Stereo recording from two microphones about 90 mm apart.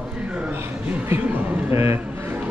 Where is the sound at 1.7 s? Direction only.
30° right (ahead or behind).